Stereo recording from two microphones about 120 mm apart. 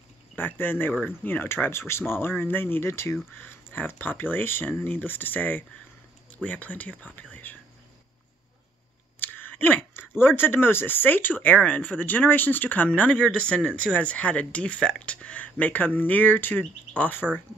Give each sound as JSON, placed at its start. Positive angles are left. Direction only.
{"t": 0.4, "sound": "speech", "side_deg": 15}
{"t": 9.2, "sound": "speech", "side_deg": 15}